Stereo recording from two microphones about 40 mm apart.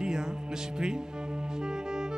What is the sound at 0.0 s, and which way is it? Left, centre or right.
Music, centre.